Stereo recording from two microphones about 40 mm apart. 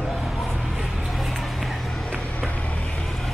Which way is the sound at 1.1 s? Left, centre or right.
Centre.